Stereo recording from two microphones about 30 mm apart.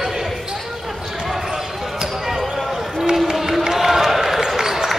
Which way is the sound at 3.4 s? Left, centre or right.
Centre.